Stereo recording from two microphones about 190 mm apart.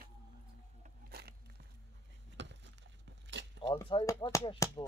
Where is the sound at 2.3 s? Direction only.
70° right (ahead or behind).